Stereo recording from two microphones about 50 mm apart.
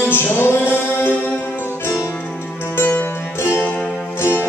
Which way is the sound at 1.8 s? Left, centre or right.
Left.